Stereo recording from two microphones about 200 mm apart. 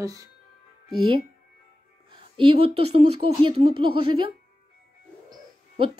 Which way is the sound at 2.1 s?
25° right (ahead or behind).